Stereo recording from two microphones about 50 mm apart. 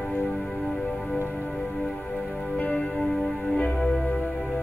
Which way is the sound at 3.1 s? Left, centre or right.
Centre.